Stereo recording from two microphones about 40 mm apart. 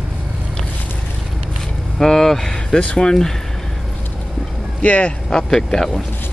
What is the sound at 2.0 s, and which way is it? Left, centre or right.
Speech, centre.